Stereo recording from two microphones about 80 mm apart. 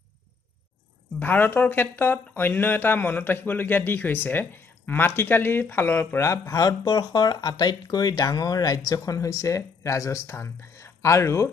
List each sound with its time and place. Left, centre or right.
1.2 s speech: left